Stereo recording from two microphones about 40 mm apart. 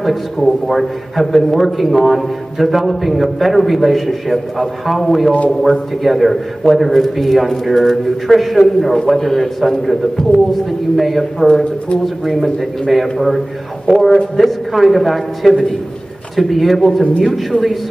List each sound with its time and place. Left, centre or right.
0.0 s a man's voice: centre
11.4 s speech: centre
12.0 s a man's voice: centre